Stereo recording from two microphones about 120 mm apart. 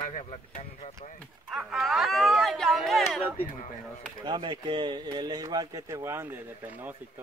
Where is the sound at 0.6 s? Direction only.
80° left.